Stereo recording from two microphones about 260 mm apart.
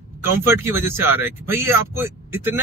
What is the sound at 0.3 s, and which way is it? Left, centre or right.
Speech, centre.